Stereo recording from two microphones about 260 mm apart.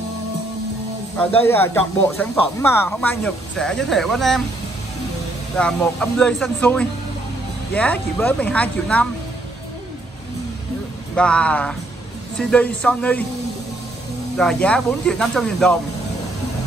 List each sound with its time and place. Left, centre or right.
1.1 s speech: centre
5.6 s speech: centre
11.1 s speech: centre
14.3 s speech: centre